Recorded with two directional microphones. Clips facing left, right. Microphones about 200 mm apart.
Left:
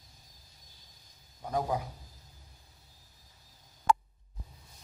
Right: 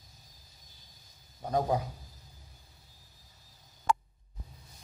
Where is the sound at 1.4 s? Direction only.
35° right (ahead or behind).